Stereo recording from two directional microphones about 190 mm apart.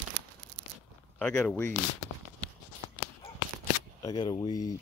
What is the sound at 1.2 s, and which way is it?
Speech, 5° left (ahead or behind).